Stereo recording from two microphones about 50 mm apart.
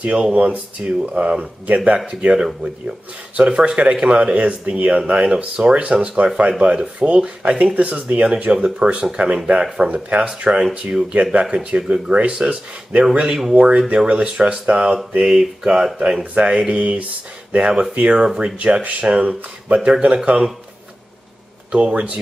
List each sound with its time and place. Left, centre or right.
0.0 s speech: right
2.3 s mantra: centre
3.3 s speech: centre
15.1 s mantra: centre
16.0 s speech: right
18.2 s mantra: centre
18.8 s speech: right
21.7 s speech: right